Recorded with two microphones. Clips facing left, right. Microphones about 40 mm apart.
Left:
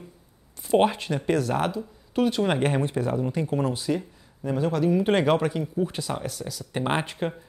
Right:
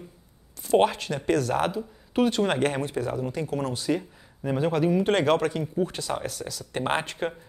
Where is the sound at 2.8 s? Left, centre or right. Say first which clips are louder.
Left 2 dB; left.